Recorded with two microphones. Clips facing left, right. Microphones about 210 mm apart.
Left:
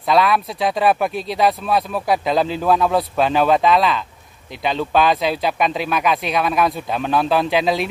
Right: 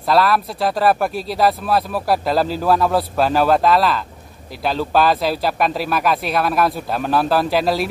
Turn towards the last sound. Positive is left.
turn(degrees=-5)  # may be behind; listen again after turning